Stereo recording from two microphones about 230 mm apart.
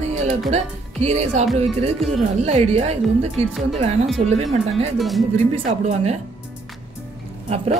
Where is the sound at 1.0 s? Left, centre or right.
Right.